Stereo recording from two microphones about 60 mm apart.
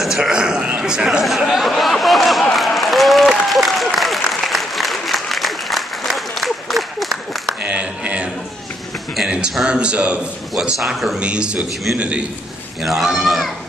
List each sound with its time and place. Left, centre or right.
0.0 s a sound: centre
0.7 s a man's voice: centre
1.2 s a sound: centre
3.4 s applause: centre
7.6 s a sound: right
9.3 s a man's voice: centre
10.8 s speech: centre
11.1 s a man's voice: centre
12.8 s speech: centre